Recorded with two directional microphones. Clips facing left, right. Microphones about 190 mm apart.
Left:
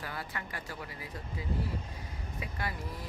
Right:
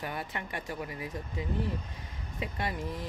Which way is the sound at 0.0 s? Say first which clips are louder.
Right 4 dB; 20° right (ahead or behind).